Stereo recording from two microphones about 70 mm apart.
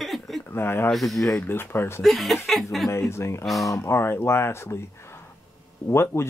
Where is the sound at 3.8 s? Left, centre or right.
Left.